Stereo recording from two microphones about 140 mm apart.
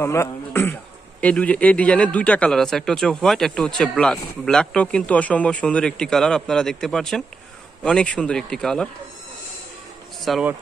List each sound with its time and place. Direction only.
0.0 s speech: 20° left (ahead or behind)
10.3 s speech: centre (ahead or behind)